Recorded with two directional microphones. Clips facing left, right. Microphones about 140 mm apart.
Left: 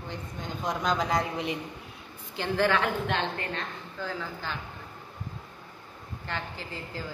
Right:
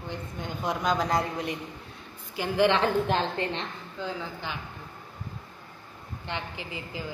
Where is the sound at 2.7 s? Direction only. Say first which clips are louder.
Right 3 dB; 35° right (ahead or behind).